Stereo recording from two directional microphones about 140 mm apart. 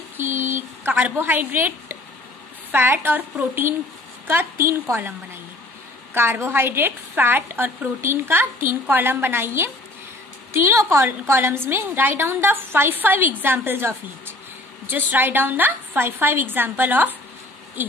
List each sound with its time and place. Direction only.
0.2 s a woman's voice: 15° right (ahead or behind)
6.1 s a woman's voice: 15° right (ahead or behind)